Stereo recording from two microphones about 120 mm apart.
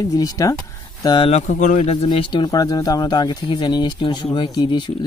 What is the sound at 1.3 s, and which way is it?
Speech, 80° left.